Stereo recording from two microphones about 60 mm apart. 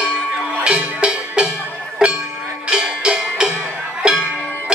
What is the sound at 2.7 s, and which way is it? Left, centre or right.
Music, centre.